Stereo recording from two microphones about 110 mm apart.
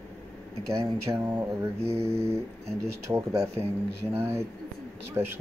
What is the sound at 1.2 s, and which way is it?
Speech, 20° right (ahead or behind).